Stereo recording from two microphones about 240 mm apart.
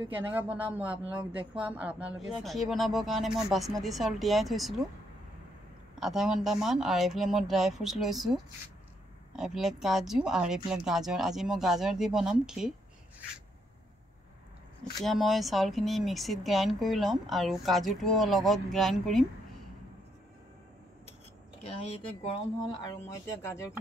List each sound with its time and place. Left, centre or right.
0.1 s speech: centre
5.9 s speech: centre
15.0 s speech: centre
21.6 s speech: left